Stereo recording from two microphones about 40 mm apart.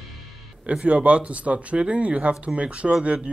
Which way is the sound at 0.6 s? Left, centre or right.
Right.